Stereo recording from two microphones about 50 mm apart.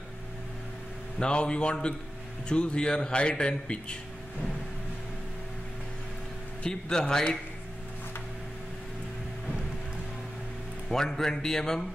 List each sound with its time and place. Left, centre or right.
1.2 s speech: centre
6.6 s a man's voice: centre
10.9 s a man's voice: centre